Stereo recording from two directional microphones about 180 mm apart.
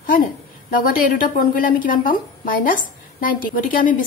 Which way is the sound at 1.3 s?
50° left (ahead or behind).